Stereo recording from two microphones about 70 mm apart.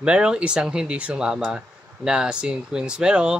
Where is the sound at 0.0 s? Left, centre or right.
Centre.